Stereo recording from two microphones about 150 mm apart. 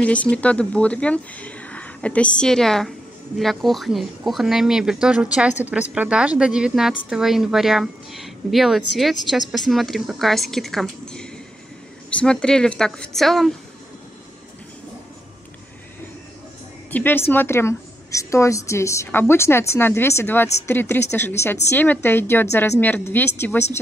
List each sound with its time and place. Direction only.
0.0 s a woman's voice: 10° left (ahead or behind)
16.9 s a woman's voice: 15° left (ahead or behind)